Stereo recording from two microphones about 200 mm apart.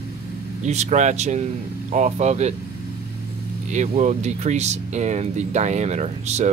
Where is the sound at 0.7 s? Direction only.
35° right (ahead or behind).